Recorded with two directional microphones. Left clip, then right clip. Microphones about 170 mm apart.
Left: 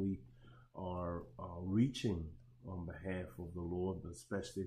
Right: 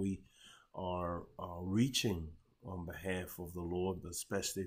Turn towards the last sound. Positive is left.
turn(degrees=-15)  # may be behind; listen again after turning